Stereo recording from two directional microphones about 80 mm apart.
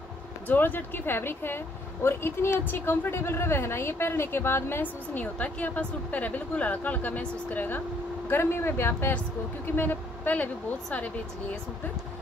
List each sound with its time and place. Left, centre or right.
0.5 s speech: left